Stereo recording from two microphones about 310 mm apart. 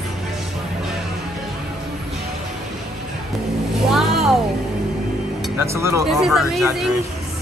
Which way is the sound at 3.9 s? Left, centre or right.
Centre.